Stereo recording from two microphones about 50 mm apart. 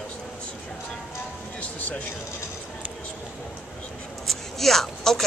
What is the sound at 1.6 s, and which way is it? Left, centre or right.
Vehicle, left.